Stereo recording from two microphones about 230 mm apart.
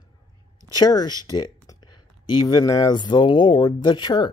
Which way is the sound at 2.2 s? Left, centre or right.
Centre.